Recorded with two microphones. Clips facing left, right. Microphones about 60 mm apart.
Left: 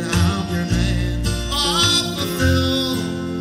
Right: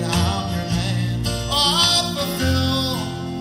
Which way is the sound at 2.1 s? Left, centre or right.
Centre.